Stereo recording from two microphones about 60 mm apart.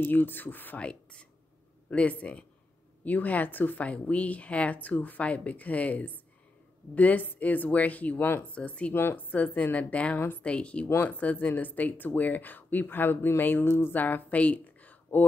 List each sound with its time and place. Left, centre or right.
0.0 s speech: left
0.7 s speech: centre
10.4 s speech: centre